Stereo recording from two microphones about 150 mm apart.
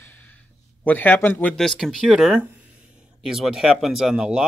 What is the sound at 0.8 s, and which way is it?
Speech, 10° left (ahead or behind).